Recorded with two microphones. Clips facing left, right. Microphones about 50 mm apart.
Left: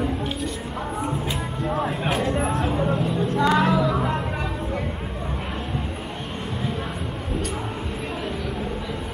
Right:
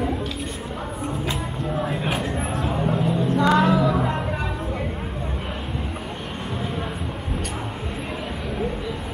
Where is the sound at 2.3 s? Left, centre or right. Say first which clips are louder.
Left 3 dB; left.